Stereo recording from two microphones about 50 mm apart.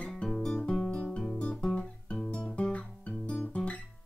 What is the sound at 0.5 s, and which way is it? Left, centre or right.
Guitar, left.